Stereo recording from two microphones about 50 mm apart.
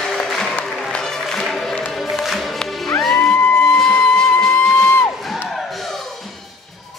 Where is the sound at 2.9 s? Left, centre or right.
Centre.